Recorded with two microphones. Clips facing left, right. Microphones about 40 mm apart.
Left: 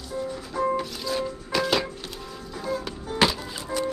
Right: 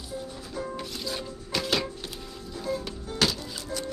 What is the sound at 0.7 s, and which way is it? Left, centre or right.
Music, centre.